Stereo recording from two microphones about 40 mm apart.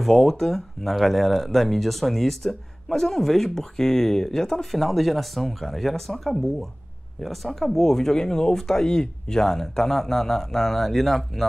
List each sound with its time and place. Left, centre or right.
0.0 s speech: centre
4.6 s speech: centre